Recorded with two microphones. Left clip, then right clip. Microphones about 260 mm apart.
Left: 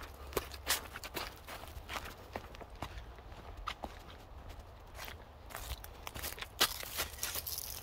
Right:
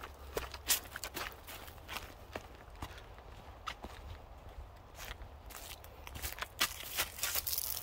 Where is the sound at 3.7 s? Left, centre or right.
Centre.